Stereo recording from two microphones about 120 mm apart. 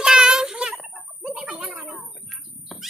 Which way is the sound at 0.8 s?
Centre (ahead or behind).